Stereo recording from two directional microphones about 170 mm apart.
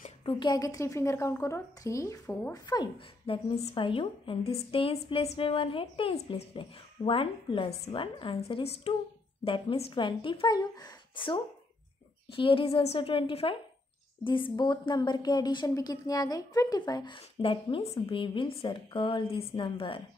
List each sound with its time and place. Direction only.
0.2 s a woman's voice: 30° left (ahead or behind)
3.5 s a woman's voice: 35° left (ahead or behind)